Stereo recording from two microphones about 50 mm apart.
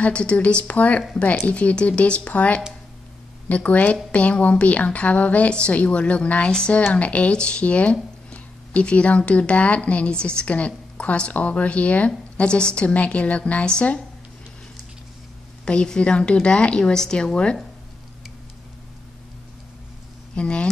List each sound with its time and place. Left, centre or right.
0.0 s speech: left
15.6 s speech: centre
20.3 s speech: centre